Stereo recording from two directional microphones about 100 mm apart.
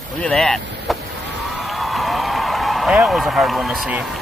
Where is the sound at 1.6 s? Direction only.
Centre (ahead or behind).